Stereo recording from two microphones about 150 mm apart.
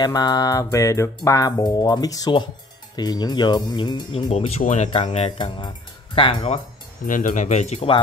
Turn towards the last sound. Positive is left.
turn(degrees=45)  # may be behind; listen again after turning